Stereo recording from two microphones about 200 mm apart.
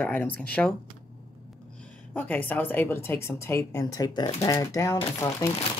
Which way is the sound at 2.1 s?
10° left (ahead or behind).